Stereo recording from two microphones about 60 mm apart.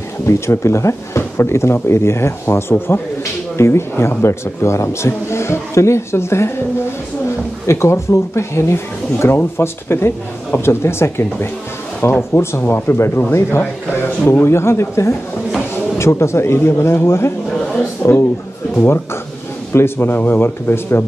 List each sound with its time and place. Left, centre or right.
0.3 s speech: left
19.7 s speech: left